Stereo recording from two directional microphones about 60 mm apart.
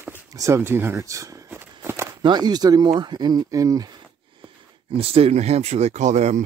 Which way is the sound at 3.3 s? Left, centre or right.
Right.